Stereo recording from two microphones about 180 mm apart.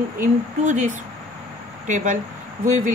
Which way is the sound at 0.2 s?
45° right (ahead or behind).